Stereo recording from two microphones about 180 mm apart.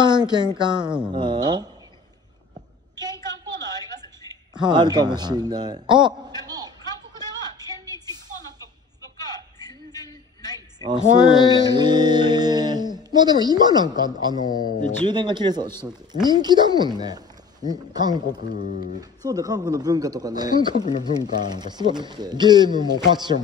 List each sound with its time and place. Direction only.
0.0 s speech: 25° right (ahead or behind)
0.8 s speech: 5° right (ahead or behind)
1.1 s speech: 25° right (ahead or behind)
4.6 s speech: 25° right (ahead or behind)
5.9 s a sound: 25° right (ahead or behind)
7.2 s music: 20° right (ahead or behind)
10.5 s a sound: 20° right (ahead or behind)
11.3 s speech: 20° right (ahead or behind)
18.2 s speech: 55° left (ahead or behind)
18.9 s speech: 20° right (ahead or behind)